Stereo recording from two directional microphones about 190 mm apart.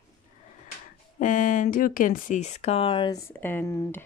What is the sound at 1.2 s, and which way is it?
Speech, 45° left (ahead or behind).